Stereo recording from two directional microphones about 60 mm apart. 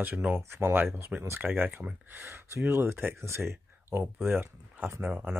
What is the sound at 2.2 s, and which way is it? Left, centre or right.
Speech, right.